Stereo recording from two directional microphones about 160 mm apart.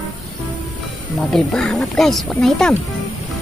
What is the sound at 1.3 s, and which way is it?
Speech, 5° left (ahead or behind).